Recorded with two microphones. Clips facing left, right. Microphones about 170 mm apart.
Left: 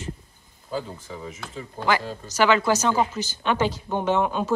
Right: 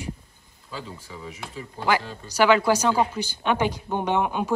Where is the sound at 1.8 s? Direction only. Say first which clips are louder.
Even; 10° right (ahead or behind).